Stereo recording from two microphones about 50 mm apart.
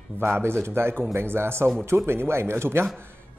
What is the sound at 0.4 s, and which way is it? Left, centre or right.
A man's voice, right.